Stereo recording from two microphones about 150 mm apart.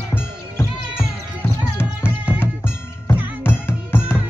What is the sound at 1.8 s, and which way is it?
Music, 15° left (ahead or behind).